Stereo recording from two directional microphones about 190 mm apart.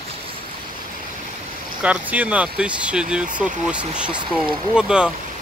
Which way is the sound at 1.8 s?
5° right (ahead or behind).